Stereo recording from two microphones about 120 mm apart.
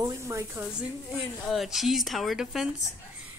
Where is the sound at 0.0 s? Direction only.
25° right (ahead or behind).